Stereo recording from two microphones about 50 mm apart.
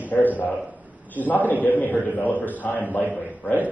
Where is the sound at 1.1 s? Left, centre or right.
Left.